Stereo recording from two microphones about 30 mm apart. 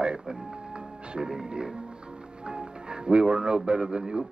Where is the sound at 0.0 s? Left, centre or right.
Right.